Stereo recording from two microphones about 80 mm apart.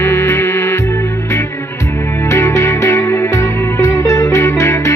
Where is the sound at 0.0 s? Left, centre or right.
Left.